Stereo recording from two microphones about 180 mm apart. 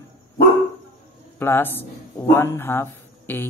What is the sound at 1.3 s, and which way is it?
Speech, 10° left (ahead or behind).